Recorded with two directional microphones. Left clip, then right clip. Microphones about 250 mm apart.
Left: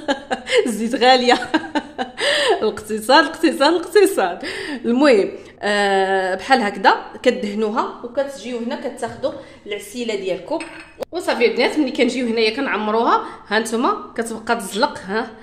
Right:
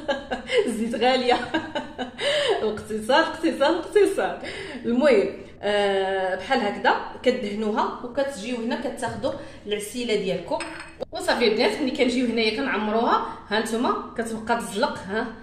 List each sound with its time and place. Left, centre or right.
0.0 s a woman's voice: left
9.9 s a woman's voice: left